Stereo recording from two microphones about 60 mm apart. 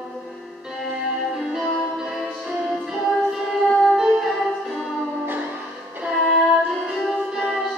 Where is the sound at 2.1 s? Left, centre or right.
Centre.